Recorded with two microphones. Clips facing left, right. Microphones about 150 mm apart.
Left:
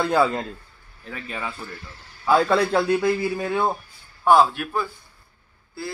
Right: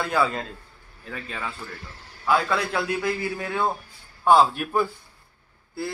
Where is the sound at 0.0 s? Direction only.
25° left (ahead or behind).